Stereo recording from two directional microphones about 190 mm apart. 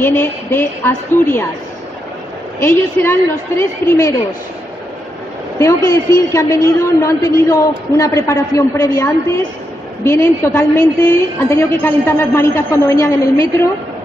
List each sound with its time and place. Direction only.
0.0 s a man's voice: 10° left (ahead or behind)
2.6 s a man's voice: 10° left (ahead or behind)
5.6 s a man's voice: 15° left (ahead or behind)